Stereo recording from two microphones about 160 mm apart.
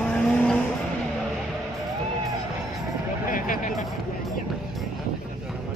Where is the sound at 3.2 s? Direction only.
55° left (ahead or behind).